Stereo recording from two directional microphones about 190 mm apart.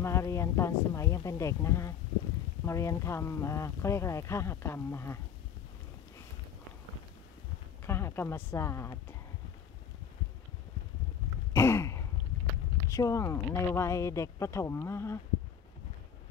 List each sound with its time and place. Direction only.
0.0 s speech: 15° left (ahead or behind)
7.8 s a woman's voice: 10° left (ahead or behind)
11.5 s a sound: 15° left (ahead or behind)
12.9 s speech: 15° left (ahead or behind)